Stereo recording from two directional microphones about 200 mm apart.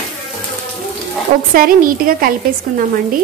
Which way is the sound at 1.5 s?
45° right (ahead or behind).